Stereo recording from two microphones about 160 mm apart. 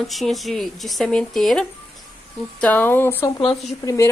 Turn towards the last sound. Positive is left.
turn(degrees=20)  # may be behind; listen again after turning